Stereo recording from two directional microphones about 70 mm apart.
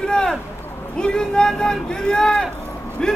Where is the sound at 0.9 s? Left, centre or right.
Centre.